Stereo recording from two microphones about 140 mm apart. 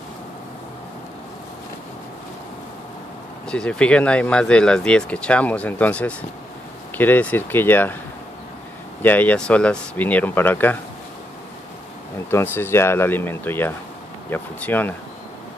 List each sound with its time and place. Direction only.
3.4 s speech: 5° left (ahead or behind)
9.0 s speech: 10° left (ahead or behind)
12.3 s speech: 15° left (ahead or behind)